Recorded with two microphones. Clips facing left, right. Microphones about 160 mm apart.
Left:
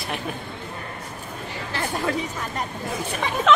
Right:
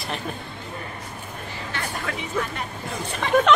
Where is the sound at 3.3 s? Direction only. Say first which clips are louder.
Right 7 dB; 70° right (ahead or behind).